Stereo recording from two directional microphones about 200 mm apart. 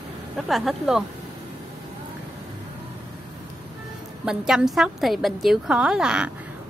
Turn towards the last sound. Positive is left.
turn(degrees=-5)  # may be behind; listen again after turning